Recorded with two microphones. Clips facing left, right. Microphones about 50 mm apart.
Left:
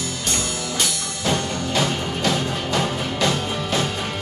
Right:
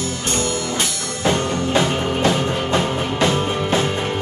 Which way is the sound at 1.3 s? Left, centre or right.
Right.